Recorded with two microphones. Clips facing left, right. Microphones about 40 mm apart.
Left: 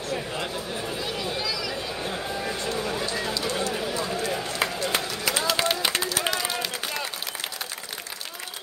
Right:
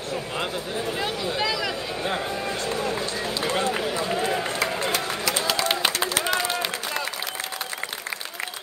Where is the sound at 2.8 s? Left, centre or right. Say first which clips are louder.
Right 1 dB; right.